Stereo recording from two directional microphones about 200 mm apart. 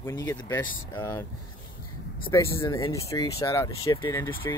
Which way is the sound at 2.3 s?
15° left (ahead or behind).